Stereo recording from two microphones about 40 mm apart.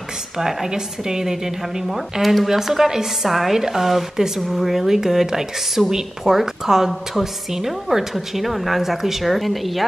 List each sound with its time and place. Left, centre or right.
0.4 s a woman's voice: centre